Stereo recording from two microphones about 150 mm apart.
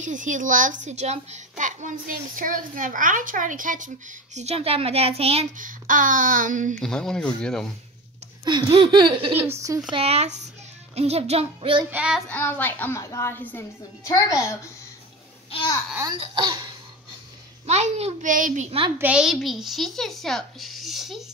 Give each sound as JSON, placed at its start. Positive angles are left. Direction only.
{"t": 0.0, "sound": "a child's voice", "side_deg": -55}
{"t": 5.6, "sound": "a child's voice", "side_deg": -65}
{"t": 6.7, "sound": "a child's voice", "side_deg": 5}
{"t": 8.5, "sound": "laughter", "side_deg": -30}
{"t": 9.5, "sound": "speech", "side_deg": -20}
{"t": 9.9, "sound": "a child's voice", "side_deg": -45}
{"t": 11.9, "sound": "child singing", "side_deg": -5}
{"t": 12.3, "sound": "a child's voice", "side_deg": 10}
{"t": 16.2, "sound": "speech", "side_deg": -30}
{"t": 17.6, "sound": "a child's voice", "side_deg": -50}
{"t": 18.9, "sound": "a child's voice", "side_deg": -5}